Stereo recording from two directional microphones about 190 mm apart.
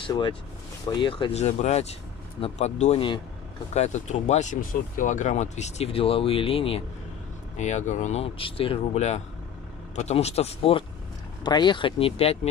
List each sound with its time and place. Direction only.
0.0 s speech: 25° left (ahead or behind)